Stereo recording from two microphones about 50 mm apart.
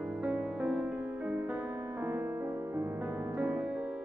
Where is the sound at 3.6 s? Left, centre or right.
Centre.